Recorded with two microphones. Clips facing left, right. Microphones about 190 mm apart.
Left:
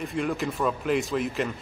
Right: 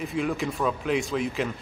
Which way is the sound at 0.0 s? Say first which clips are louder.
Even; centre (ahead or behind).